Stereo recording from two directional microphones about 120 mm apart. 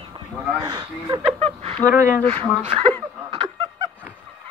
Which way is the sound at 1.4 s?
55° right (ahead or behind).